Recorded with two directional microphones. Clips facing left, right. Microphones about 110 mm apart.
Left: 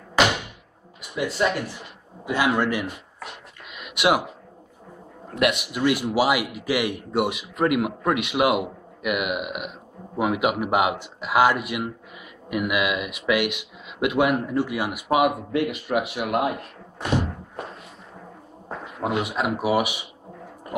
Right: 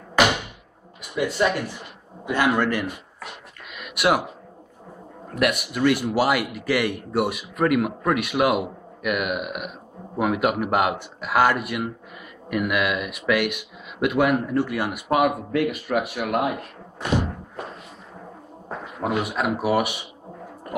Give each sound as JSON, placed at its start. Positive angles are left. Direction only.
{"t": 1.1, "sound": "speech", "side_deg": 0}
{"t": 3.7, "sound": "a sound", "side_deg": 20}
{"t": 5.3, "sound": "speech", "side_deg": 20}
{"t": 15.5, "sound": "speech", "side_deg": 20}
{"t": 18.7, "sound": "a sound", "side_deg": -5}
{"t": 19.0, "sound": "speech", "side_deg": 15}